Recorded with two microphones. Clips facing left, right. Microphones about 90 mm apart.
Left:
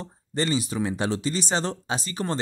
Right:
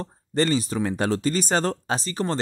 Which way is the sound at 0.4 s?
40° right (ahead or behind).